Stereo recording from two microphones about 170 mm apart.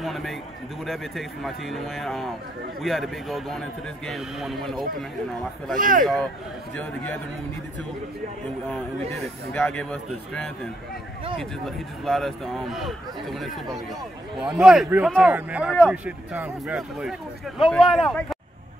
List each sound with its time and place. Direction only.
0.0 s speech: centre (ahead or behind)
5.8 s speech: 50° right (ahead or behind)
6.8 s speech: 5° left (ahead or behind)
9.5 s speech: 10° left (ahead or behind)